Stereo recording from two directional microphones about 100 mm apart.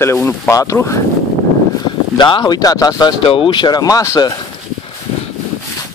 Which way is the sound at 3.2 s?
60° left (ahead or behind).